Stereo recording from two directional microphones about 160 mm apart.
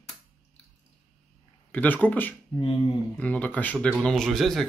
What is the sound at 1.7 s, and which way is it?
Speech, 10° left (ahead or behind).